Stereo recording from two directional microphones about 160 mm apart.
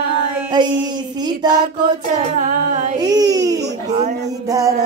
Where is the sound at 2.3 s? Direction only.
50° right (ahead or behind).